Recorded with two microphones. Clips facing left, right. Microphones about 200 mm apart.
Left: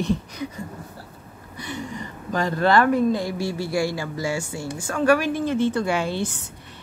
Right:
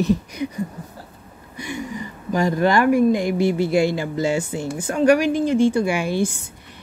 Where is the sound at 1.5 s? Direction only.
10° right (ahead or behind).